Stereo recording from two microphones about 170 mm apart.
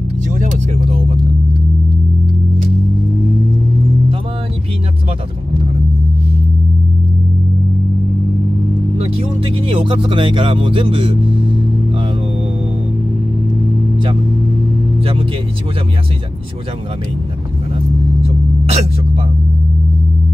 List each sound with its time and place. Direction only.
0.3 s music: 45° right (ahead or behind)
8.9 s music: 35° right (ahead or behind)
18.2 s hiccup: 35° right (ahead or behind)